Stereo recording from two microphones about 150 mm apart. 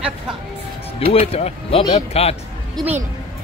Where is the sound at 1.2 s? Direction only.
40° left (ahead or behind).